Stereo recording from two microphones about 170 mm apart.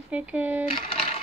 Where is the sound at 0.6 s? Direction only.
35° left (ahead or behind).